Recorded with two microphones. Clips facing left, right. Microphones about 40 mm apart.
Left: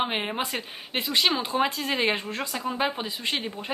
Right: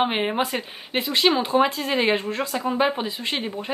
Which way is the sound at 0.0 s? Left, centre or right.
Centre.